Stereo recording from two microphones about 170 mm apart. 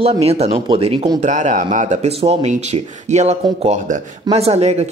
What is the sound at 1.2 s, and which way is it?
Speech, 45° right (ahead or behind).